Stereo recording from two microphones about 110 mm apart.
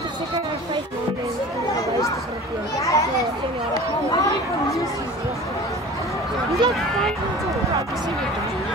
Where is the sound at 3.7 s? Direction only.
35° left (ahead or behind).